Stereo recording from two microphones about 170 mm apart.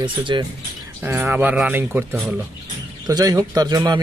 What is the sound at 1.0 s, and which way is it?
Speech, 10° right (ahead or behind).